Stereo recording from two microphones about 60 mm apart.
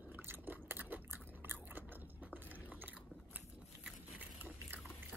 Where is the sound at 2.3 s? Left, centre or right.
Right.